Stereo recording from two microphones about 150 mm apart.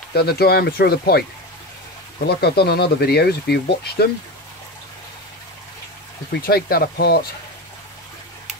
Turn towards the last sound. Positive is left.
turn(degrees=90)